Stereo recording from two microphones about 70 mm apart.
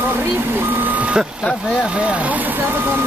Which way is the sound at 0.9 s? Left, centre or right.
Centre.